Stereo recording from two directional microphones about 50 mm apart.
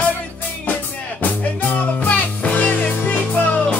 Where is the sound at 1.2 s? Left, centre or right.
Left.